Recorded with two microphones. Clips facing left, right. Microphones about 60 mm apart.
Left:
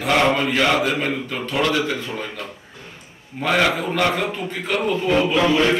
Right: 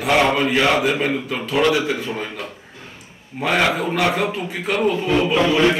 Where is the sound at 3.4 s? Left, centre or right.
Centre.